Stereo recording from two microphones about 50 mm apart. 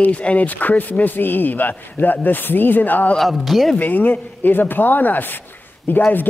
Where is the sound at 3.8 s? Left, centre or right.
Left.